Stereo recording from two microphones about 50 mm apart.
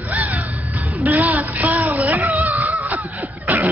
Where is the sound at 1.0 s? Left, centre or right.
Right.